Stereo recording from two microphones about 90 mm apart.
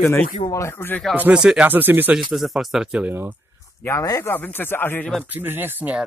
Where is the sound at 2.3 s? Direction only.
Centre (ahead or behind).